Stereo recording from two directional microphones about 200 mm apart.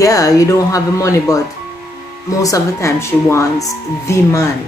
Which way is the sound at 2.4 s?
15° left (ahead or behind).